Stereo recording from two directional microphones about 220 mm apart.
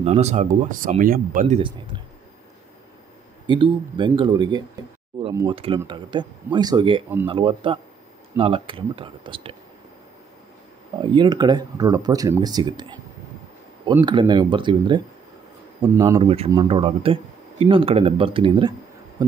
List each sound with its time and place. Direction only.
0.0 s speech: 30° right (ahead or behind)
3.4 s speech: 20° right (ahead or behind)
11.0 s speech: 20° right (ahead or behind)
14.0 s speech: 20° right (ahead or behind)